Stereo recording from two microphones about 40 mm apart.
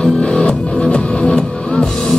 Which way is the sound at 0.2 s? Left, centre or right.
Left.